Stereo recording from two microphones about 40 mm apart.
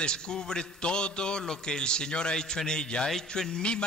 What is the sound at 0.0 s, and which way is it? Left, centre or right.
A man's voice, centre.